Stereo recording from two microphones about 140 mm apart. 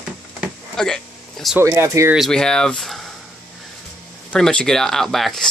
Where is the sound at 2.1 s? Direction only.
5° left (ahead or behind).